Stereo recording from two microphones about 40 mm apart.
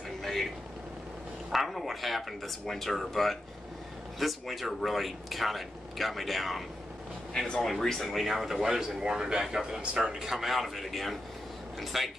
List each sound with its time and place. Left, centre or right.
0.2 s a sound: centre
1.5 s speech: centre
7.3 s speech: centre
7.8 s a man's voice: centre